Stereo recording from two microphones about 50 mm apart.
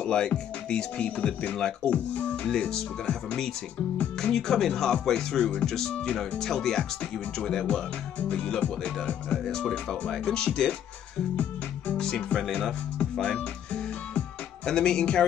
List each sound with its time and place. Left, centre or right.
0.0 s speech: centre
2.4 s speech: centre
5.4 s speech: left
5.7 s speech: centre
7.6 s speech: left
9.5 s speech: centre
12.0 s speech: centre
14.7 s speech: centre